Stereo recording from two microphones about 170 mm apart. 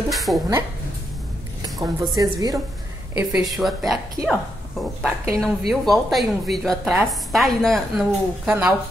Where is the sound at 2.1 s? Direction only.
20° right (ahead or behind).